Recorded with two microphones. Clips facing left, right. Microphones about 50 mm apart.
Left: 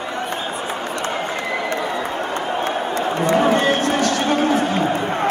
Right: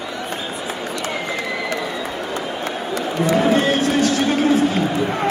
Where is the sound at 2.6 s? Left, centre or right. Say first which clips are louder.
Left 3 dB; left.